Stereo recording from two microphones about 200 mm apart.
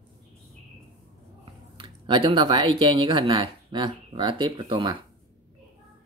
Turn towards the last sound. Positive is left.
turn(degrees=-20)  # may be behind; listen again after turning